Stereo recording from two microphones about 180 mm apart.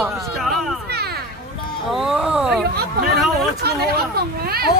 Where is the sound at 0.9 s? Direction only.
65° right (ahead or behind).